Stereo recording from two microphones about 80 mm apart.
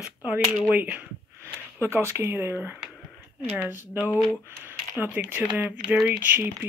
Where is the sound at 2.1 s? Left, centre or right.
Right.